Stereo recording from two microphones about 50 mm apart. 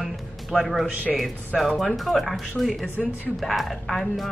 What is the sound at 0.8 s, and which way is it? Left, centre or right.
Speech, right.